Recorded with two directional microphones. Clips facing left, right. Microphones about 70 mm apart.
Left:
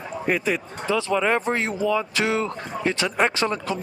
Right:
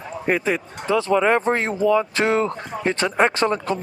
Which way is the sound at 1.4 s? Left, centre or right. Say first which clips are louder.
Right 4 dB; right.